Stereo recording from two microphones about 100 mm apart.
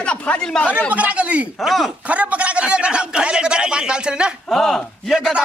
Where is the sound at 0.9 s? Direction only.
15° right (ahead or behind).